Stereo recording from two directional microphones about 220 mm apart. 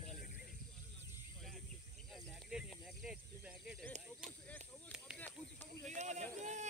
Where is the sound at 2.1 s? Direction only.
Centre (ahead or behind).